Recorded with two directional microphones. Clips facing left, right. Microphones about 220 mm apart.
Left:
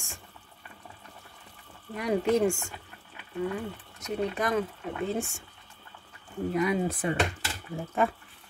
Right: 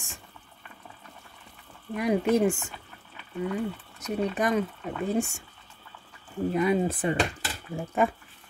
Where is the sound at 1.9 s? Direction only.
20° right (ahead or behind).